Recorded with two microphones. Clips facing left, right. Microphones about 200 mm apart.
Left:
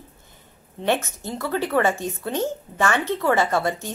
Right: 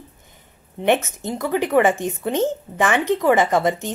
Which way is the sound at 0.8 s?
20° right (ahead or behind).